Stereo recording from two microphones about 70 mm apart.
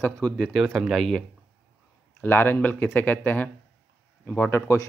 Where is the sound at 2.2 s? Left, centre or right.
Left.